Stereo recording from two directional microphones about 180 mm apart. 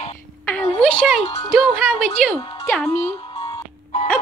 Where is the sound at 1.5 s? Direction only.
5° left (ahead or behind).